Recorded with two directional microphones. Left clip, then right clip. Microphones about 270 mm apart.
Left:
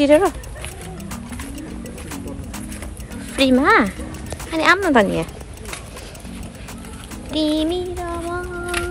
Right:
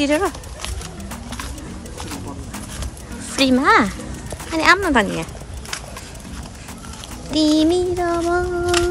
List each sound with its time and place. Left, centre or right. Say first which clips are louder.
0.0 s speech: left 5 dB; centre
3.3 s child singing: even; centre
4.5 s speech: right 1 dB; centre
7.2 s child singing: right 4 dB; centre